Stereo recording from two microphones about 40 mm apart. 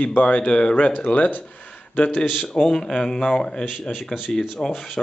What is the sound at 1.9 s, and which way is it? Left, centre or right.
Speech, left.